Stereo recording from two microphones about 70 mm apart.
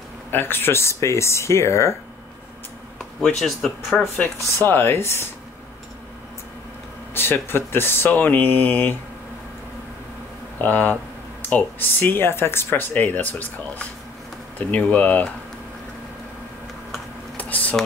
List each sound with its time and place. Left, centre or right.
0.3 s speech: left
3.0 s speech: centre
4.6 s speech: left
7.2 s speech: left
10.6 s speech: left
17.4 s a sound: left